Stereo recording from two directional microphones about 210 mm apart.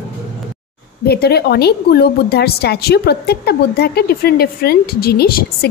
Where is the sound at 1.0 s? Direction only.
50° left (ahead or behind).